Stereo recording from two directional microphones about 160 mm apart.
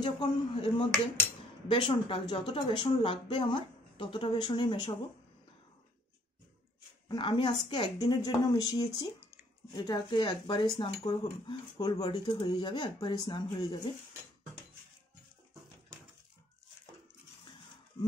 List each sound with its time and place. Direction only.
0.0 s speech: 35° left (ahead or behind)
7.1 s speech: 30° left (ahead or behind)